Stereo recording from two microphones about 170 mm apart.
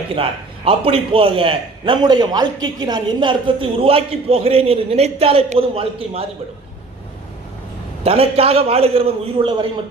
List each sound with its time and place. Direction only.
0.1 s a man's voice: 35° right (ahead or behind)
8.0 s a man's voice: 35° right (ahead or behind)